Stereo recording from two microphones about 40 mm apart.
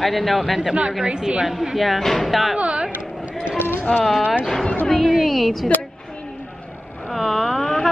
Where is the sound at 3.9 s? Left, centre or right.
Left.